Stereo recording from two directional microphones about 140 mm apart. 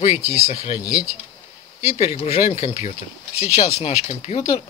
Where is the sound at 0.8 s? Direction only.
10° right (ahead or behind).